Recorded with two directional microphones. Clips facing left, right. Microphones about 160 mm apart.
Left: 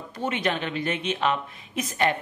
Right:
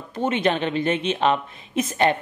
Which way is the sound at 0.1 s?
25° right (ahead or behind).